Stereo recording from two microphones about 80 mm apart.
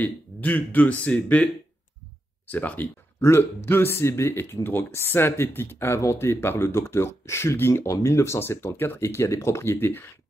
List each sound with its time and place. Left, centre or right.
0.0 s speech: left
3.2 s speech: left